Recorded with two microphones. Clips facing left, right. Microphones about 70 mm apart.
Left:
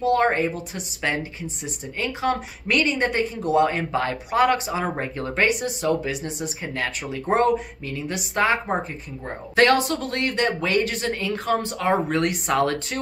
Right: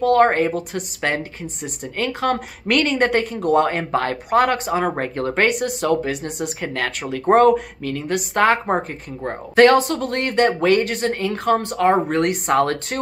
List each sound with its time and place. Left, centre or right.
0.0 s a woman's voice: right
8.6 s a woman's voice: right